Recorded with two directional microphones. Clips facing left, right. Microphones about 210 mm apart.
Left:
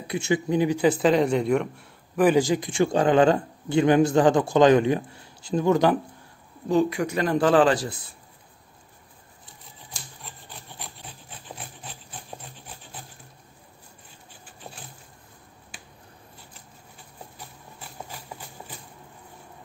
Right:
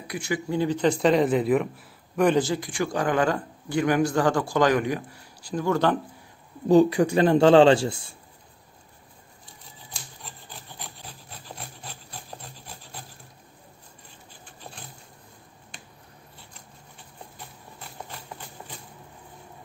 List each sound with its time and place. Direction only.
0.0 s speech: 25° left (ahead or behind)
6.7 s a man's voice: 35° right (ahead or behind)
10.2 s rub: centre (ahead or behind)
17.4 s a sound: 5° left (ahead or behind)